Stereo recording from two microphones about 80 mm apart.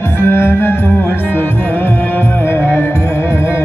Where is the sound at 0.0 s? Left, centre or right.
Left.